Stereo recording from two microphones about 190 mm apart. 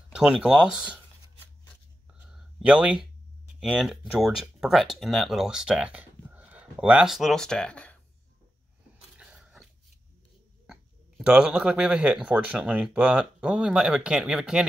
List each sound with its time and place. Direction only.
0.1 s speech: 5° right (ahead or behind)
2.1 s a sound: 5° right (ahead or behind)
3.5 s speech: centre (ahead or behind)
9.1 s biting: 5° right (ahead or behind)
10.7 s speech: 5° right (ahead or behind)